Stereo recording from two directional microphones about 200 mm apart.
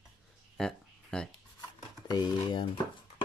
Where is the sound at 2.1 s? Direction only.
20° left (ahead or behind).